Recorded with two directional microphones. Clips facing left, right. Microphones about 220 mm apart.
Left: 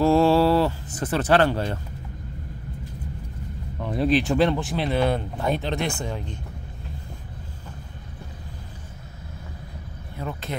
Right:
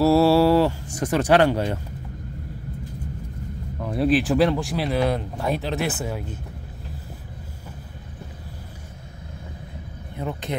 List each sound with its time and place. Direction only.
0.0 s speech: 10° right (ahead or behind)
3.8 s speech: centre (ahead or behind)
10.1 s speech: 20° right (ahead or behind)